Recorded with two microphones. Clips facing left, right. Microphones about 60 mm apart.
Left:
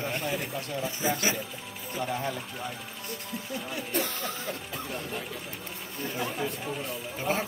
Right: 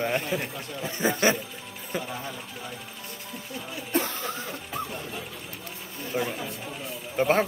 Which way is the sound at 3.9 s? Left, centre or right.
Right.